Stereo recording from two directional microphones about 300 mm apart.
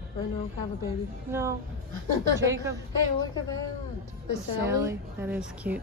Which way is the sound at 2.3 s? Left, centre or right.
Centre.